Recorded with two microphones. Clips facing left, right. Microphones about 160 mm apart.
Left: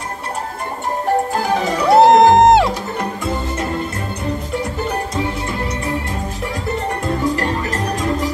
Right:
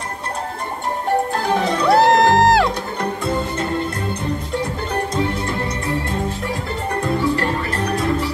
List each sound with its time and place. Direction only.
1.9 s music: centre (ahead or behind)
7.2 s music: 40° left (ahead or behind)